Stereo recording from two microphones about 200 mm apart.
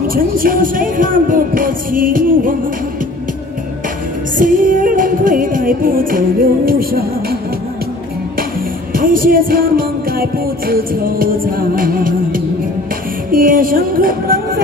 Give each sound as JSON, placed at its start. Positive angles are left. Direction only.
{"t": 0.1, "sound": "music", "side_deg": -45}
{"t": 4.4, "sound": "music", "side_deg": -45}
{"t": 8.9, "sound": "music", "side_deg": -45}